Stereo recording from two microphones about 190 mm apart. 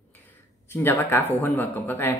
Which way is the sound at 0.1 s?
10° left (ahead or behind).